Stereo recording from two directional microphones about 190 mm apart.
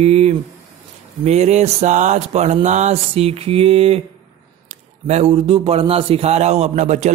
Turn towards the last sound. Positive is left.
turn(degrees=-35)  # may be behind; listen again after turning